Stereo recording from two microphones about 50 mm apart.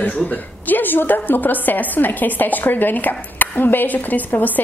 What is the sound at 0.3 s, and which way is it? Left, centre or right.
A woman's voice, left.